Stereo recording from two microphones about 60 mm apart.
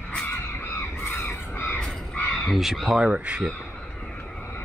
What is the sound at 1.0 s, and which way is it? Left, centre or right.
Crow, left.